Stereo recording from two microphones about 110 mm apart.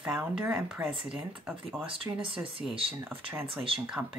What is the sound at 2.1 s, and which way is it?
Speech, 30° right (ahead or behind).